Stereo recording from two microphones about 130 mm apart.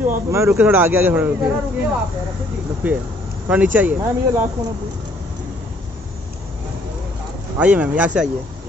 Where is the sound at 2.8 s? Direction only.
15° right (ahead or behind).